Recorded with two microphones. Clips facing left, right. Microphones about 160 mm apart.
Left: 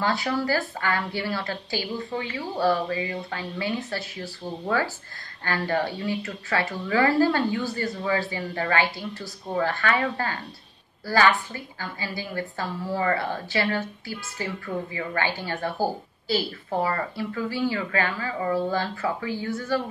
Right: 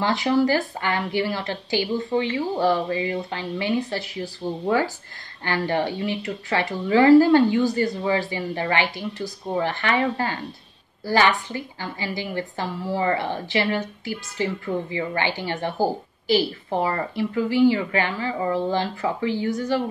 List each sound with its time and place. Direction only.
0.0 s a woman's voice: 20° right (ahead or behind)